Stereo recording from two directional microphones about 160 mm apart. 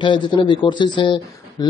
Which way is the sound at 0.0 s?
30° left (ahead or behind).